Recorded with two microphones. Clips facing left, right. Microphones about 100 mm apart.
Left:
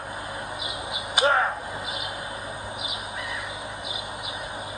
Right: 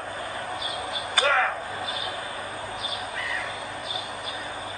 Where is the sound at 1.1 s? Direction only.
25° left (ahead or behind).